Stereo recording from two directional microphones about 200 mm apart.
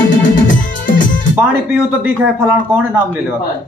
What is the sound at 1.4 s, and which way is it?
Music, 10° right (ahead or behind).